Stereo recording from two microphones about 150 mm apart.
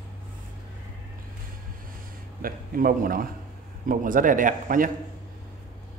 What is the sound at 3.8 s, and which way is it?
A man's voice, 65° right (ahead or behind).